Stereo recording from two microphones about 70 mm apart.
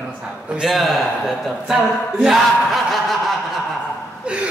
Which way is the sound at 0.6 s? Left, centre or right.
Centre.